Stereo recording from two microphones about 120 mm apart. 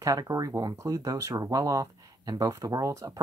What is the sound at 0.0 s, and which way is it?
Speech, 30° right (ahead or behind).